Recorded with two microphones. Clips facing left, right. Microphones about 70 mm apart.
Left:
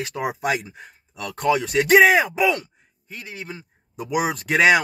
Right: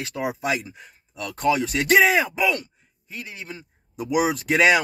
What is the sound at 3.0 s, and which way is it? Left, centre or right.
Speech, left.